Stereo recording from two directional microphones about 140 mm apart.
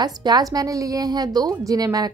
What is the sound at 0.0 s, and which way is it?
A woman's voice, 30° right (ahead or behind).